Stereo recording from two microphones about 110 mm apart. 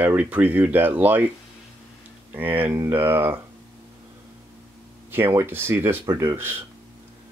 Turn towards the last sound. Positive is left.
turn(degrees=-30)  # may be behind; listen again after turning